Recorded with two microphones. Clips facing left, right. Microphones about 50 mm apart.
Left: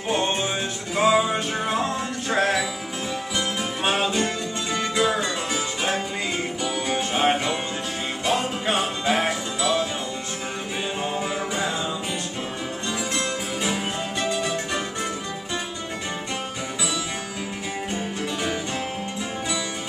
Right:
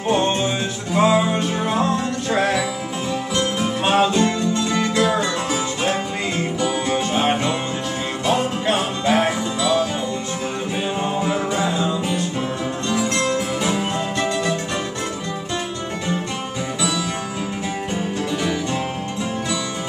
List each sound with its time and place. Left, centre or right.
0.1 s music: centre
4.1 s music: centre
8.3 s music: centre
11.0 s music: centre
13.3 s music: centre